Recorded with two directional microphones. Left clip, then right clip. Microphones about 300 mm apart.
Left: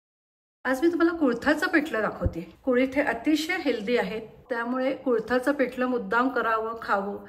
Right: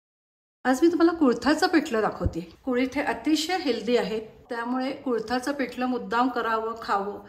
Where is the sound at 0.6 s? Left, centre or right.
Centre.